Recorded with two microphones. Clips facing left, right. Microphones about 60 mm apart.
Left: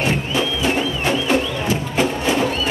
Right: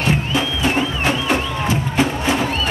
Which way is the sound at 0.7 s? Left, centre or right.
Right.